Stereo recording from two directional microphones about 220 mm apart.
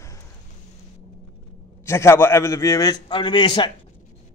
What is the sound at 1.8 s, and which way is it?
A man's voice, 10° left (ahead or behind).